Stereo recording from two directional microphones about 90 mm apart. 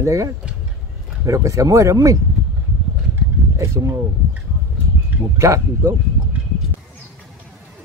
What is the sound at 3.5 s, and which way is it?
Speech, 35° right (ahead or behind).